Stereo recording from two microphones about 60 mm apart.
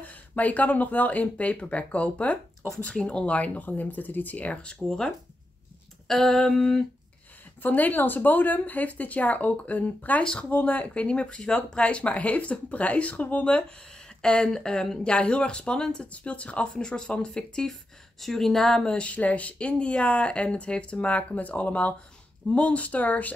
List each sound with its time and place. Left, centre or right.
0.0 s speech: left
4.6 s speech: centre
7.6 s speech: left